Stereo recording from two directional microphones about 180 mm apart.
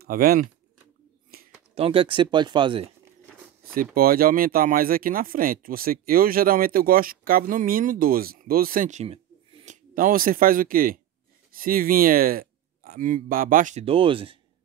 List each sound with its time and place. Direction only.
0.0 s speech: 55° right (ahead or behind)
1.3 s a sound: 55° right (ahead or behind)
1.8 s speech: 30° right (ahead or behind)
3.7 s speech: 55° right (ahead or behind); by 9.8 s 30° right (ahead or behind)
9.9 s speech: 50° right (ahead or behind); by 14.4 s 30° right (ahead or behind)